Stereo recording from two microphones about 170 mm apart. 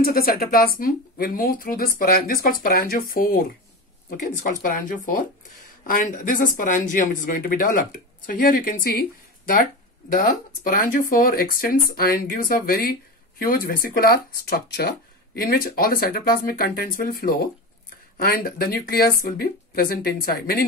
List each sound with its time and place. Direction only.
0.0 s speech: 60° left (ahead or behind)